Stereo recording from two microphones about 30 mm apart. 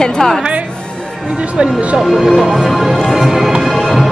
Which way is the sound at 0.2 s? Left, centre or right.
Left.